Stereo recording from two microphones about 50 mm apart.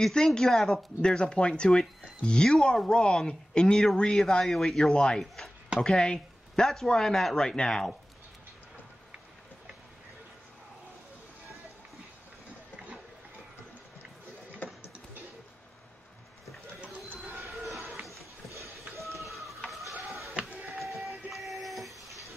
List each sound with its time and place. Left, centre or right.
0.0 s speech: centre
5.2 s speech: centre
5.8 s speech: centre
17.6 s a sound: centre
19.1 s a sound: centre
20.4 s printer: right
20.9 s train: centre